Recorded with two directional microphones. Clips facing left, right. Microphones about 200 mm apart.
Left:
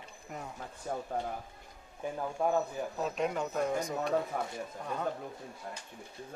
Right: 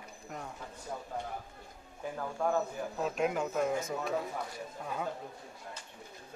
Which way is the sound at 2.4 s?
20° left (ahead or behind).